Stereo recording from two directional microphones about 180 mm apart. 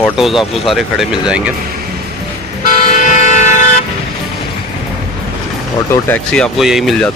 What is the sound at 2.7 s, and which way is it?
Vehicle, 40° left (ahead or behind).